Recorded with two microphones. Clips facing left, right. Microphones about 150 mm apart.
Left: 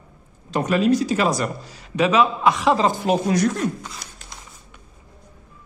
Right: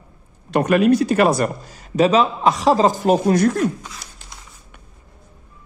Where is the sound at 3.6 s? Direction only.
5° right (ahead or behind).